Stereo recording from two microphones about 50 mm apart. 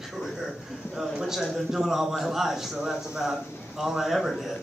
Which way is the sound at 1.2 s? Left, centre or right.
Centre.